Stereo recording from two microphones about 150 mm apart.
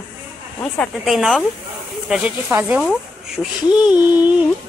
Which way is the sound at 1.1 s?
Centre (ahead or behind).